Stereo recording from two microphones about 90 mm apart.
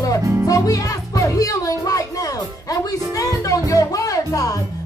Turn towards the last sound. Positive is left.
turn(degrees=40)  # may be behind; listen again after turning